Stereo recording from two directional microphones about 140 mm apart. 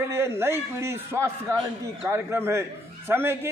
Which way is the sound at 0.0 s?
20° right (ahead or behind).